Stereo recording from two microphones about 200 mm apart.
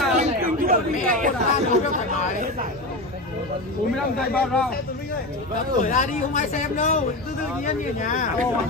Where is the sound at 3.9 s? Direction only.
5° left (ahead or behind).